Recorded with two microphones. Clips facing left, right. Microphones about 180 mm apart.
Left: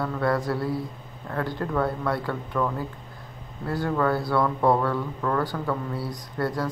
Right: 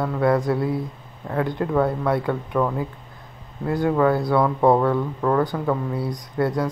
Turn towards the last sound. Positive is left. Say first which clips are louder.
# right 5 dB
turn(degrees=-20)  # may be behind; listen again after turning